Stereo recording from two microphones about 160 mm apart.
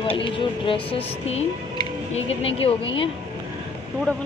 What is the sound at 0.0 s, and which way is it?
A woman's voice, 35° left (ahead or behind).